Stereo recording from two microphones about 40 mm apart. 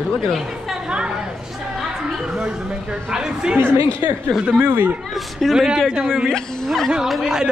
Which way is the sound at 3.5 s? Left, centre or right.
Right.